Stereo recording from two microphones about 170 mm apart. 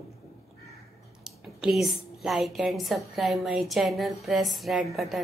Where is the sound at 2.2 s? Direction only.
Centre (ahead or behind).